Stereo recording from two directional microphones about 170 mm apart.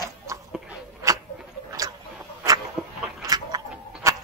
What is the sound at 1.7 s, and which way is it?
Tick-tock, 20° right (ahead or behind).